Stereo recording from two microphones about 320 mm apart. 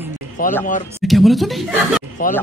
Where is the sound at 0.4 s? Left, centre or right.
Left.